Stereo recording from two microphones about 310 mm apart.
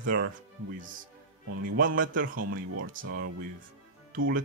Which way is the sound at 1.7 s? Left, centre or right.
Right.